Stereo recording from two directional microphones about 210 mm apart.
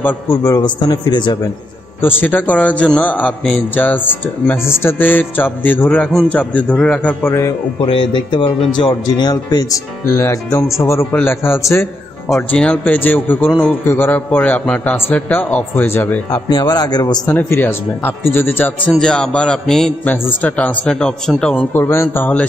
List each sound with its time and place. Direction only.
0.0 s a man's voice: 15° left (ahead or behind)
2.0 s a man's voice: 10° left (ahead or behind)
7.8 s a man's voice: 25° left (ahead or behind); by 22.5 s 10° left (ahead or behind)